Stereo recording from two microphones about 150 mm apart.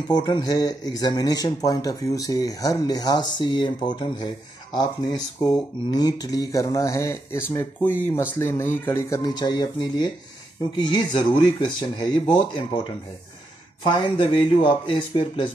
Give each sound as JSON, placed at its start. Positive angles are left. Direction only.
{"t": 0.1, "sound": "speech", "side_deg": 30}
{"t": 9.2, "sound": "speech", "side_deg": 30}
{"t": 11.1, "sound": "speech", "side_deg": 30}
{"t": 13.8, "sound": "speech", "side_deg": 35}